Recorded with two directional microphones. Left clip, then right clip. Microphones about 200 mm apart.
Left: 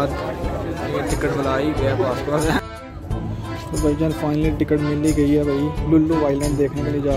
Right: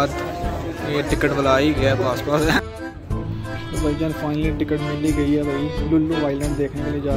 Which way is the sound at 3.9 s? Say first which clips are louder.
Left 2 dB; 10° left (ahead or behind).